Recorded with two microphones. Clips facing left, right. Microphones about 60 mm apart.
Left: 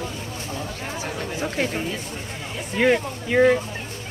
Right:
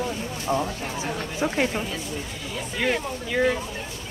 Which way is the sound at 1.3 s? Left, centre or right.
Centre.